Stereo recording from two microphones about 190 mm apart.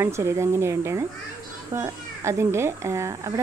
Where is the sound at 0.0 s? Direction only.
15° right (ahead or behind).